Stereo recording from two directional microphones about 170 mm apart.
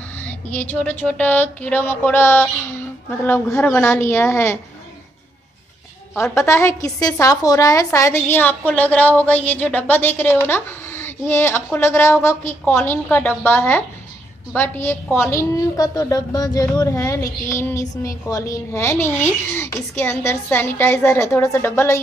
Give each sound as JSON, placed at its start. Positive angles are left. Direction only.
{"t": 0.2, "sound": "a woman's voice", "side_deg": 10}
{"t": 6.3, "sound": "a woman's voice", "side_deg": 15}